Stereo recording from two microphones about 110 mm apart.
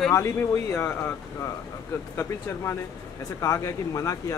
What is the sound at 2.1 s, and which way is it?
A man's voice, 25° left (ahead or behind).